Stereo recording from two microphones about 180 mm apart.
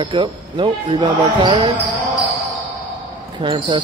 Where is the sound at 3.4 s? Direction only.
30° right (ahead or behind).